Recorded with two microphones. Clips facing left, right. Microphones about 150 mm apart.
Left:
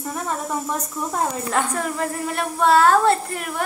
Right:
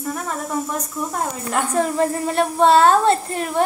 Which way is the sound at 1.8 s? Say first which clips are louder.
Right 6 dB; 25° right (ahead or behind).